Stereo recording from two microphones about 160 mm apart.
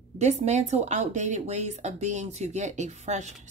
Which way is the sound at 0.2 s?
45° right (ahead or behind).